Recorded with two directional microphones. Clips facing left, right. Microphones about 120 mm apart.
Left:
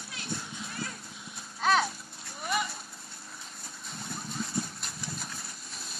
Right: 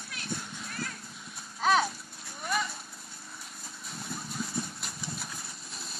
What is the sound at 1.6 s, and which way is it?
Children playing, centre (ahead or behind).